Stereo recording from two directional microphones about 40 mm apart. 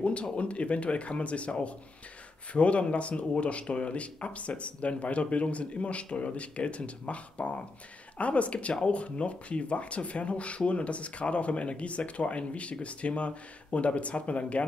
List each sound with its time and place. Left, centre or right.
0.0 s speech: left